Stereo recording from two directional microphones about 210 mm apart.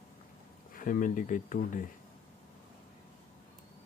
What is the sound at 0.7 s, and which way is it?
Speech, 40° left (ahead or behind).